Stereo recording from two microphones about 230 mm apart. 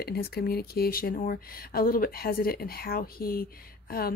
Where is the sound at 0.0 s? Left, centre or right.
Left.